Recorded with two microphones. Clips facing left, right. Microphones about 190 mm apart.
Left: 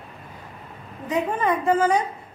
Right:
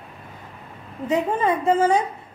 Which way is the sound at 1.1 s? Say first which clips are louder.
Right 2 dB; 25° right (ahead or behind).